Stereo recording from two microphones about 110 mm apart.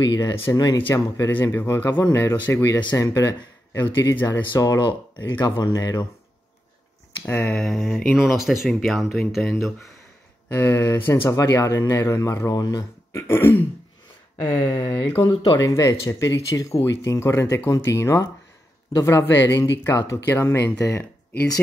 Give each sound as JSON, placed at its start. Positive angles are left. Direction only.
{"t": 0.3, "sound": "speech", "side_deg": 25}
{"t": 0.6, "sound": "speech", "side_deg": 40}
{"t": 7.2, "sound": "speech", "side_deg": 20}
{"t": 7.5, "sound": "speech", "side_deg": 0}
{"t": 10.5, "sound": "speech", "side_deg": 20}
{"t": 13.3, "sound": "speech", "side_deg": 20}
{"t": 15.6, "sound": "speech", "side_deg": 30}